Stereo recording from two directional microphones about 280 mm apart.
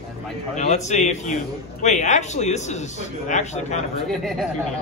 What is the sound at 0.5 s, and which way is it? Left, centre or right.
A man's voice, left.